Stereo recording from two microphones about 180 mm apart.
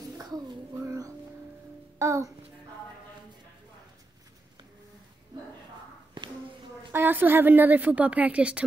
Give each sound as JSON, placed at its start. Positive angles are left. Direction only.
{"t": 0.8, "sound": "music", "side_deg": -20}
{"t": 2.0, "sound": "a child's voice", "side_deg": -15}
{"t": 6.9, "sound": "a woman's voice", "side_deg": -10}